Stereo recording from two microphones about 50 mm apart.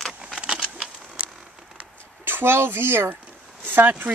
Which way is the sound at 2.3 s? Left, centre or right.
Right.